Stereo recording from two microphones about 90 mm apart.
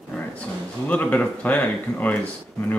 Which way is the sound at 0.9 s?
15° left (ahead or behind).